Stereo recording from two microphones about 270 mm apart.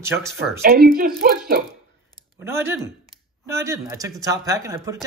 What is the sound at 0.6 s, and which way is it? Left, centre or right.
Speech, right.